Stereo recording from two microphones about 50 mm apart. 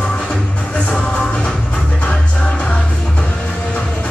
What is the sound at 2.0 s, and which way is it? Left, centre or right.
Music, left.